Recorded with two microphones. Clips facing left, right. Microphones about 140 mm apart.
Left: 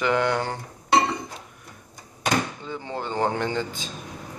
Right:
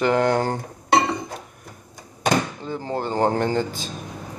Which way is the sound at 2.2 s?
40° right (ahead or behind).